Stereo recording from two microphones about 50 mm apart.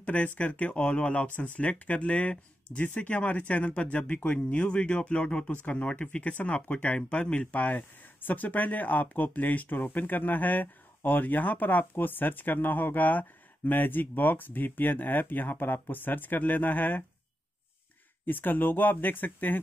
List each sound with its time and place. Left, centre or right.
0.0 s speech: left
18.2 s speech: left